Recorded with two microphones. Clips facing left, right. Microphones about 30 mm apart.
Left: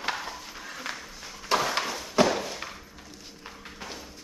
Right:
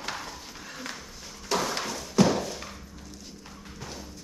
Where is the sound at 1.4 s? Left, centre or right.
Left.